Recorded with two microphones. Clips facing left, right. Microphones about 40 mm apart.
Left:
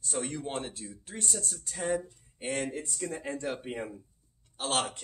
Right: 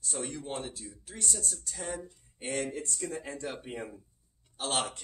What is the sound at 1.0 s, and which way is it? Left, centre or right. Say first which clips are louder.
Speech: even; left.